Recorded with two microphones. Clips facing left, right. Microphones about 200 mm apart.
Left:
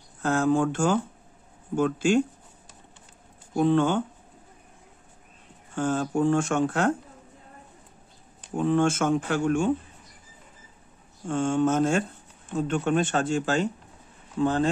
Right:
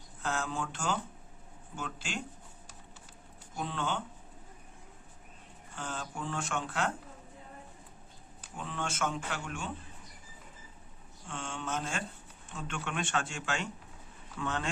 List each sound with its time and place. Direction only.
0.2 s speech: 50° left (ahead or behind)
3.5 s speech: 50° left (ahead or behind)
5.8 s speech: 45° left (ahead or behind)
8.5 s speech: 50° left (ahead or behind)
11.2 s speech: 45° left (ahead or behind)